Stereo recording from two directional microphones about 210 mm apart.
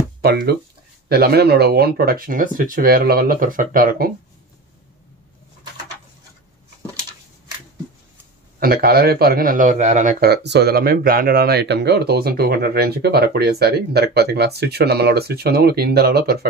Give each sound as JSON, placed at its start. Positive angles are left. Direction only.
{"t": 0.2, "sound": "a man's voice", "side_deg": -50}
{"t": 8.5, "sound": "a man's voice", "side_deg": -45}